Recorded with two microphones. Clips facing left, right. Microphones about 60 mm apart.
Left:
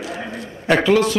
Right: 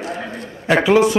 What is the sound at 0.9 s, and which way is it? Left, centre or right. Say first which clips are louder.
Speech: right 4 dB; centre.